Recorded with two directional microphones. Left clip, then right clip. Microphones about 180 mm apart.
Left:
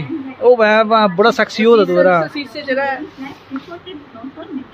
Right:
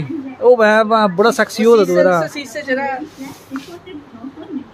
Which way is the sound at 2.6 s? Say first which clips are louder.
Left 2 dB; 35° left (ahead or behind).